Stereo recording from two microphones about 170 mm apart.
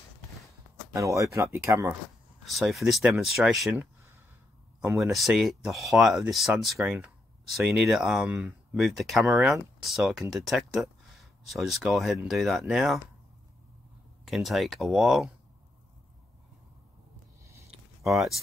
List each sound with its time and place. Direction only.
0.9 s speech: 20° right (ahead or behind)
2.4 s speech: centre (ahead or behind)
4.9 s speech: centre (ahead or behind)
14.2 s speech: centre (ahead or behind)
17.4 s a sound: 15° right (ahead or behind)
18.0 s speech: centre (ahead or behind)